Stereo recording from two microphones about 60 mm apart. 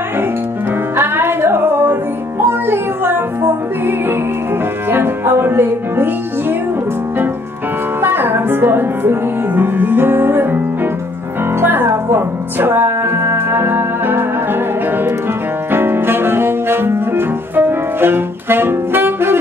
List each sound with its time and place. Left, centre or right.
0.9 s music: right
8.0 s music: right
15.7 s saxophone: right